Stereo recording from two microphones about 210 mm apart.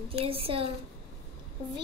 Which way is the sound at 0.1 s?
25° right (ahead or behind).